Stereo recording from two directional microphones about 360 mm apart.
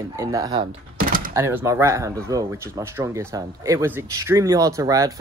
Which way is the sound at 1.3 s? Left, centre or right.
Centre.